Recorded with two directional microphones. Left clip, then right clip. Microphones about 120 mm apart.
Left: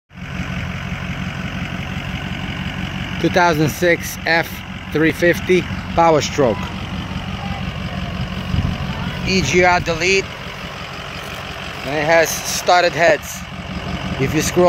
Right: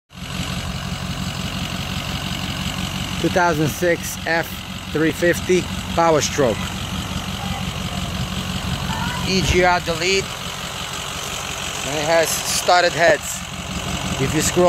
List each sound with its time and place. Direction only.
3.2 s speech: 5° left (ahead or behind)
9.2 s speech: 10° left (ahead or behind)
11.9 s speech: 20° left (ahead or behind)